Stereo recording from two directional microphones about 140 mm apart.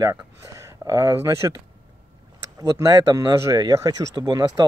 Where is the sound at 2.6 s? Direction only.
25° right (ahead or behind).